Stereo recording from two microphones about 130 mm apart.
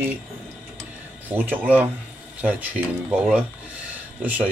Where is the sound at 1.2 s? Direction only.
15° right (ahead or behind).